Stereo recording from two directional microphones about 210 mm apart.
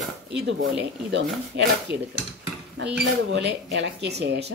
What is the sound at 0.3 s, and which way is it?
Speech, 55° right (ahead or behind).